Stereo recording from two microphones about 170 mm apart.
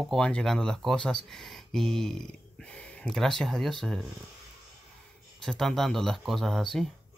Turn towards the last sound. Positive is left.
turn(degrees=0)  # may be behind; listen again after turning